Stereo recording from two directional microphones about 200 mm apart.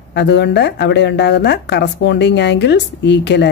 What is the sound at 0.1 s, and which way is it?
A woman's voice, 60° left (ahead or behind).